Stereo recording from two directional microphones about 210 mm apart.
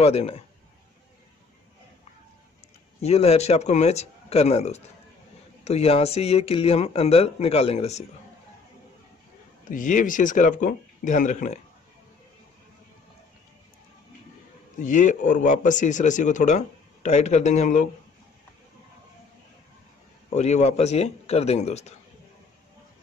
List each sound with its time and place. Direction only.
0.0 s speech: 30° left (ahead or behind)
3.0 s speech: 30° left (ahead or behind)
9.7 s speech: 40° left (ahead or behind)
14.8 s speech: 35° left (ahead or behind)
20.3 s speech: 35° left (ahead or behind)